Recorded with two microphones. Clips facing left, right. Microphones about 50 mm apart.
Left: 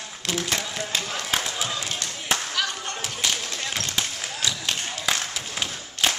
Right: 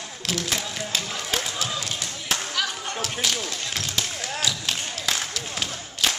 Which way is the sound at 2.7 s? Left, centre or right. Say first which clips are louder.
Even; centre.